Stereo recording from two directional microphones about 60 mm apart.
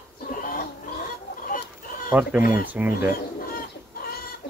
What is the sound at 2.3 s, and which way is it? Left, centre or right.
Speech, right.